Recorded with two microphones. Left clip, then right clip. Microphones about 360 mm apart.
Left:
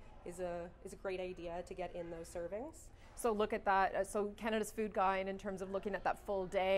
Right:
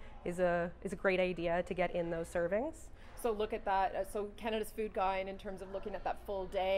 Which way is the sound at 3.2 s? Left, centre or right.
Left.